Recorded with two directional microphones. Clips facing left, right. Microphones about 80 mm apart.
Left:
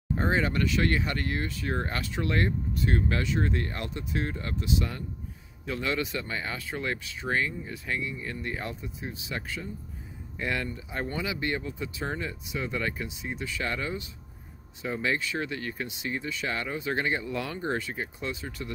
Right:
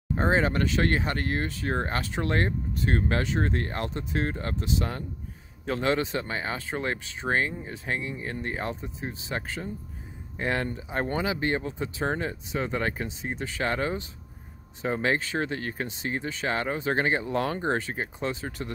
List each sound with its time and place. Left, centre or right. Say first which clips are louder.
0.1 s speech: right 3 dB; right